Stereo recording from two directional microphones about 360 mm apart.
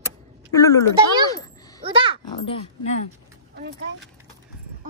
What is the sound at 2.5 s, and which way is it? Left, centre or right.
Speech, centre.